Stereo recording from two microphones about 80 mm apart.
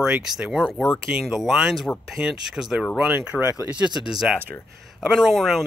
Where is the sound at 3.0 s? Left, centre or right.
Centre.